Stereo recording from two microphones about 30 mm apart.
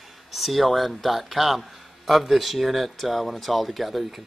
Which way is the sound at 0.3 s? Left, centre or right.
Centre.